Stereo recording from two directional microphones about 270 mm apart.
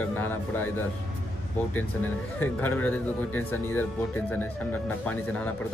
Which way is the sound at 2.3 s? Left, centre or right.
Centre.